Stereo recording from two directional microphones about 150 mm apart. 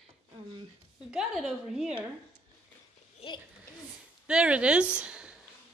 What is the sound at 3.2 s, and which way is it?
Speech, 40° left (ahead or behind).